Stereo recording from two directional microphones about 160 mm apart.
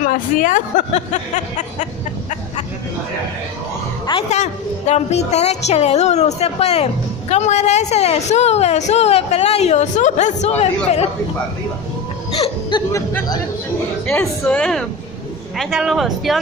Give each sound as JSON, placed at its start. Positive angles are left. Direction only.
{"t": 0.0, "sound": "a woman's voice", "side_deg": 55}
{"t": 4.3, "sound": "a woman's voice", "side_deg": 45}
{"t": 12.7, "sound": "speech", "side_deg": 30}
{"t": 14.0, "sound": "speech", "side_deg": 10}